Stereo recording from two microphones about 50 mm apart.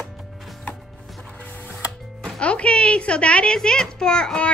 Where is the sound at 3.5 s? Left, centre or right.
Centre.